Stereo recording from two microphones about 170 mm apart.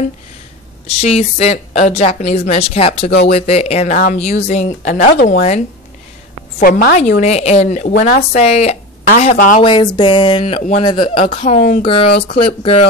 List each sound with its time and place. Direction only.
0.8 s a woman's voice: 40° left (ahead or behind)
6.6 s a woman's voice: 55° left (ahead or behind)
7.0 s a woman's voice: 45° left (ahead or behind)
11.8 s a woman's voice: 35° left (ahead or behind)